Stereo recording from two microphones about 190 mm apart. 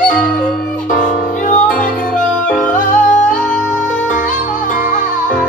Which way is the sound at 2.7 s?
40° left (ahead or behind).